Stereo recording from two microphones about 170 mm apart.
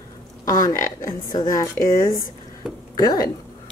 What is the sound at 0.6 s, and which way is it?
Speech, 20° left (ahead or behind).